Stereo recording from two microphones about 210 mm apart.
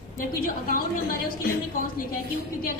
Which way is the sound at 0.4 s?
45° left (ahead or behind).